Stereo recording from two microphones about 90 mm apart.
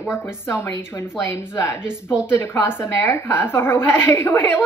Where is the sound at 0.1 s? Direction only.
30° left (ahead or behind).